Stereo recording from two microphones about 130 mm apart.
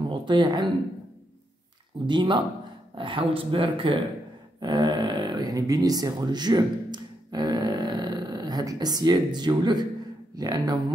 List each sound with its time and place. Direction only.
0.1 s speech: 35° right (ahead or behind)
2.0 s speech: 35° right (ahead or behind)